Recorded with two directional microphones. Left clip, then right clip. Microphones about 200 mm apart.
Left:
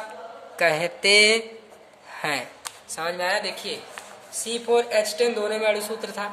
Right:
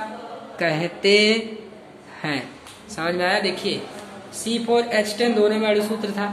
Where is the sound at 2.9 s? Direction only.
25° left (ahead or behind).